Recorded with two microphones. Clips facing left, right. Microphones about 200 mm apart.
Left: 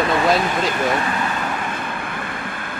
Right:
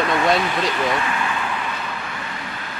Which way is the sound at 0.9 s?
45° left (ahead or behind).